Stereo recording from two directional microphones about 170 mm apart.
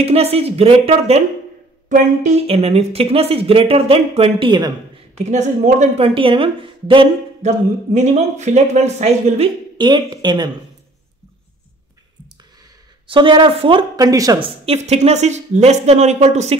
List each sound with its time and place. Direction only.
0.0 s speech: 35° right (ahead or behind)
5.2 s speech: 45° right (ahead or behind)
7.9 s speech: 40° right (ahead or behind)
9.8 s speech: 25° right (ahead or behind)
13.0 s speech: 30° right (ahead or behind)
14.7 s speech: 40° right (ahead or behind)